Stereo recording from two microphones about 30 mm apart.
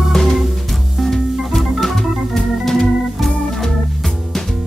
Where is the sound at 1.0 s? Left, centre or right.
Centre.